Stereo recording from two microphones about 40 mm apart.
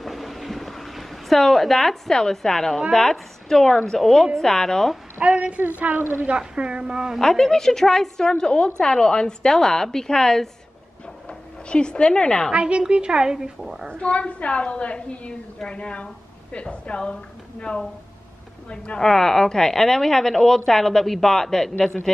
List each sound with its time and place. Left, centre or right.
0.0 s a sound: centre
2.3 s a woman's voice: centre
5.2 s a woman's voice: right
6.3 s a woman's voice: right
7.2 s a woman's voice: centre
12.5 s a woman's voice: right; by 13.8 s centre
13.9 s a woman's voice: left
18.9 s a woman's voice: centre